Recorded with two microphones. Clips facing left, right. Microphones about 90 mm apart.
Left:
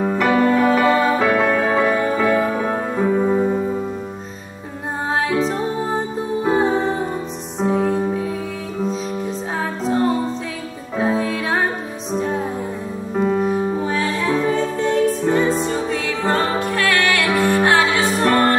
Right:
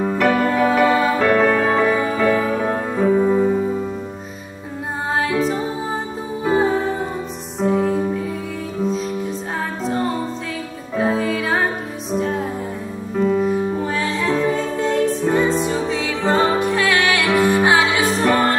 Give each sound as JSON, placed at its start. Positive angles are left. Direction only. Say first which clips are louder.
{"t": 0.0, "sound": "music", "louder": "left 1 dB", "side_deg": 5}
{"t": 5.2, "sound": "music", "louder": "even", "side_deg": 0}
{"t": 11.0, "sound": "music", "louder": "right 1 dB", "side_deg": 0}
{"t": 13.1, "sound": "music", "louder": "right 1 dB", "side_deg": 15}
{"t": 13.4, "sound": "music", "louder": "even", "side_deg": 5}
{"t": 16.5, "sound": "music", "louder": "right 1 dB", "side_deg": -15}